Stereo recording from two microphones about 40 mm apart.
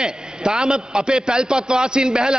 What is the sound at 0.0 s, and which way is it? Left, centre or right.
A man's voice, centre.